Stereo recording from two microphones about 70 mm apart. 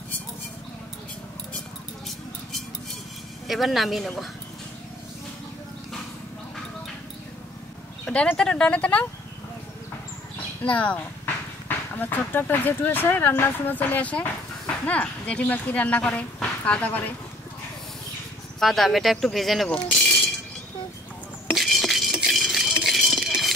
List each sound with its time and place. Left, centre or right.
3.4 s speech: centre
8.0 s a sound: centre
8.4 s speech: centre
10.6 s speech: left
18.6 s speech: centre
19.7 s cutlery: centre
21.5 s rattle: centre